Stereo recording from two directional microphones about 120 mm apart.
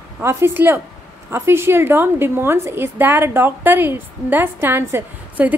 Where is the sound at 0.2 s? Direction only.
20° right (ahead or behind).